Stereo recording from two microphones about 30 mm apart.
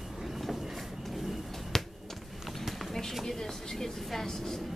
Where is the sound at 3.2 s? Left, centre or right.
Centre.